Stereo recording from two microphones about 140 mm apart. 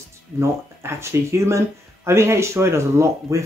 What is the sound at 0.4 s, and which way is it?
Speech, 20° right (ahead or behind).